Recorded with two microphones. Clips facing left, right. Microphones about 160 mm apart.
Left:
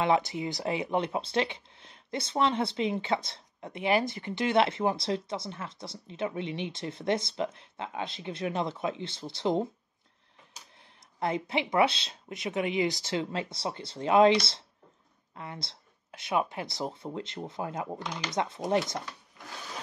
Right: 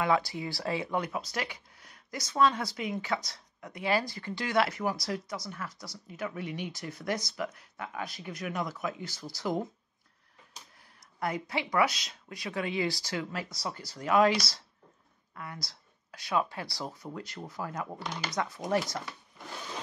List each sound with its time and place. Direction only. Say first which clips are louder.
0.0 s speech: left 2 dB; 20° left (ahead or behind)
11.1 s speech: left 3 dB; 25° left (ahead or behind)